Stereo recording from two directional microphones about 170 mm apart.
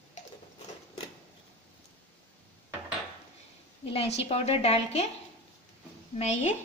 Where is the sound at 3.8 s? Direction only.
35° left (ahead or behind).